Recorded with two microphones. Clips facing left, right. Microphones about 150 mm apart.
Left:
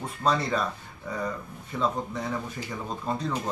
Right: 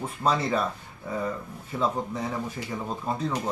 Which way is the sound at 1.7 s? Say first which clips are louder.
Right 1 dB; 10° right (ahead or behind).